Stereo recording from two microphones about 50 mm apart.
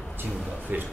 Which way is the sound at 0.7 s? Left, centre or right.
Right.